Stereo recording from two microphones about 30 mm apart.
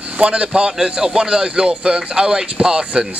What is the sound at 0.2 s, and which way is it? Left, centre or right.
Speech, right.